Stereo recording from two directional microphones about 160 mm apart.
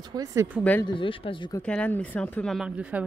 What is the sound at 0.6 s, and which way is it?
Speech, 10° left (ahead or behind).